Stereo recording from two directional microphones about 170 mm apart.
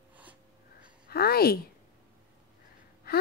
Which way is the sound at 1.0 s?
65° left (ahead or behind).